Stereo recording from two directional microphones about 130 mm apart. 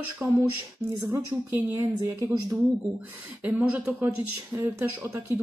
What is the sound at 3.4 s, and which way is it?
A woman's voice, 10° right (ahead or behind).